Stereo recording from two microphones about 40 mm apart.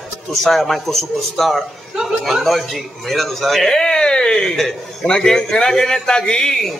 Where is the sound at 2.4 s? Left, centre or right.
Centre.